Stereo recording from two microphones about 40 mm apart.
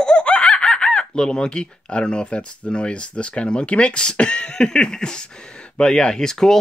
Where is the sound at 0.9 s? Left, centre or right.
Left.